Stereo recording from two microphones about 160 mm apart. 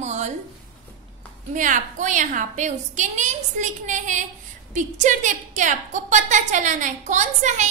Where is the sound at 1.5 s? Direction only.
55° right (ahead or behind).